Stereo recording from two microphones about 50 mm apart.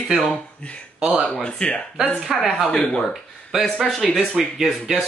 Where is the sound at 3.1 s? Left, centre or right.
Centre.